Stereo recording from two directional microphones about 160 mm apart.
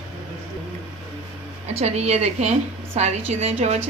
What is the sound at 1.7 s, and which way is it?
A woman's voice, 40° right (ahead or behind).